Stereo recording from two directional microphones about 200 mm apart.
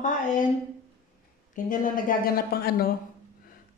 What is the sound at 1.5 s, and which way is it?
A woman's voice, 40° left (ahead or behind).